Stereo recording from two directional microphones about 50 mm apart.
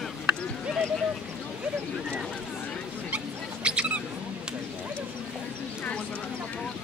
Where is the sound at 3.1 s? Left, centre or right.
Right.